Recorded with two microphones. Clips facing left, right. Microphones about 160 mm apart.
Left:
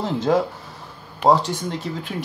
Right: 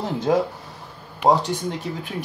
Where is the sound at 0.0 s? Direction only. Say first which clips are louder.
Left 1 dB; 15° right (ahead or behind).